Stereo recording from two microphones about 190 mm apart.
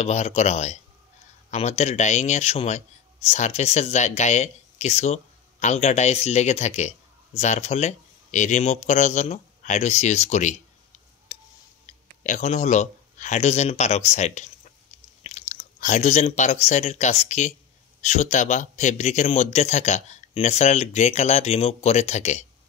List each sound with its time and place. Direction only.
0.0 s speech: 35° left (ahead or behind)
11.3 s a sound: 30° left (ahead or behind)
11.8 s speech: 40° left (ahead or behind)